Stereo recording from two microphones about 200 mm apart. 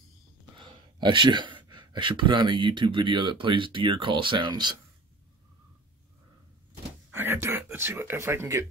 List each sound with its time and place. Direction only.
0.6 s speech: 25° right (ahead or behind)
7.1 s speech: 10° right (ahead or behind)